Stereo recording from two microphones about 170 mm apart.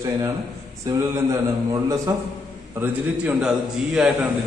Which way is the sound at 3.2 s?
5° right (ahead or behind).